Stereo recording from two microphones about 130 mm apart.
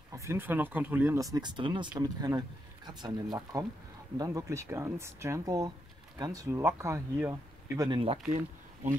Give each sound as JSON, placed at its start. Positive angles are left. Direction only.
{"t": 0.1, "sound": "speech", "side_deg": -20}
{"t": 7.9, "sound": "speech", "side_deg": -45}